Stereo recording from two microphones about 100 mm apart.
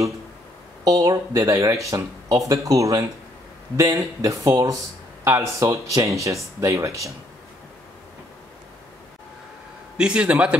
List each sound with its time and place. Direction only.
0.8 s speech: 40° right (ahead or behind)
9.9 s speech: 10° right (ahead or behind)